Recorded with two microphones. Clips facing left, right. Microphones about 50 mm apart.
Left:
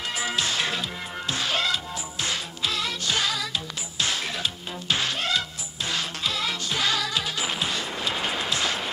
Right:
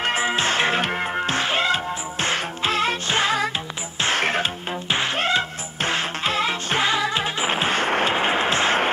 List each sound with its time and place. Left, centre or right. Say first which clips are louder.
0.0 s music: right 6 dB; right
4.0 s music: right 7 dB; right
4.9 s music: right 5 dB; right